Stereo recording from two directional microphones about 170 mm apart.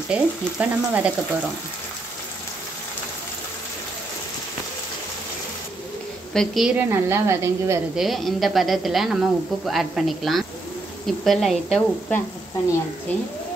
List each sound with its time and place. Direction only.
0.1 s frying: 10° right (ahead or behind)
6.3 s speech: centre (ahead or behind)
6.9 s frying: 15° right (ahead or behind)
7.9 s speech: centre (ahead or behind)